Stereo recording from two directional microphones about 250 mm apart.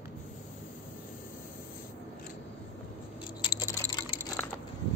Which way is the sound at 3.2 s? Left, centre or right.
Centre.